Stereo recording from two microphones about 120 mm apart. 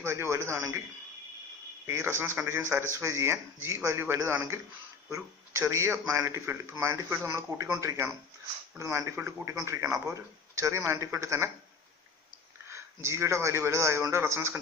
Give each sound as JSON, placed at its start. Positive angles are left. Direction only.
{"t": 0.0, "sound": "speech", "side_deg": -20}
{"t": 1.9, "sound": "speech", "side_deg": -20}
{"t": 5.6, "sound": "speech", "side_deg": -25}
{"t": 12.6, "sound": "speech", "side_deg": -25}